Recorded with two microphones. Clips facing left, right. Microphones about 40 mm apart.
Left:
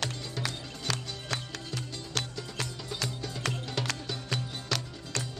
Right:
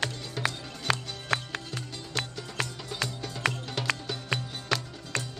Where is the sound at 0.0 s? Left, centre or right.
Right.